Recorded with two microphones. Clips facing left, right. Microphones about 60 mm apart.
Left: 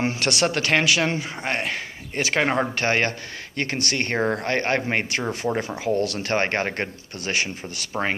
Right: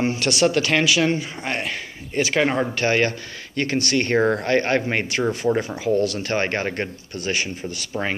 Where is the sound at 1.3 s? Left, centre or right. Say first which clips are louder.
Even; left.